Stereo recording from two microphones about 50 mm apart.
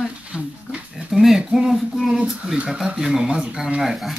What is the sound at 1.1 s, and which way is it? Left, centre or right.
Speech, centre.